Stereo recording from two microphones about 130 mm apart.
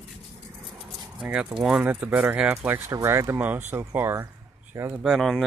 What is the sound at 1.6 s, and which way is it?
Speech, 5° right (ahead or behind).